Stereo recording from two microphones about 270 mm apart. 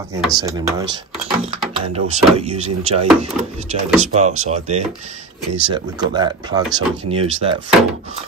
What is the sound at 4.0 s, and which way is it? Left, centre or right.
Speech, right.